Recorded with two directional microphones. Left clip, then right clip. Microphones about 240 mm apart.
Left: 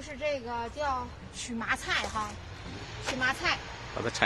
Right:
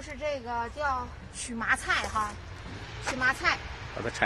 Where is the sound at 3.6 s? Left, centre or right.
Left.